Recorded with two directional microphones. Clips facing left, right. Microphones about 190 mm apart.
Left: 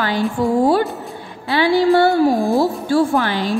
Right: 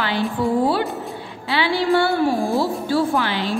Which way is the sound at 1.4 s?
45° left (ahead or behind).